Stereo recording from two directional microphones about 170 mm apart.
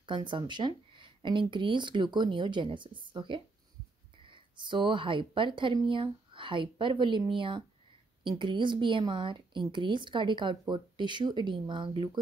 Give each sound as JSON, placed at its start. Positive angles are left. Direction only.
{"t": 0.0, "sound": "speech", "side_deg": -25}